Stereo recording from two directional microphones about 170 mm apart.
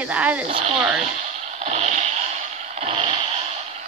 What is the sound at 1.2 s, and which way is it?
Vehicle, 40° right (ahead or behind).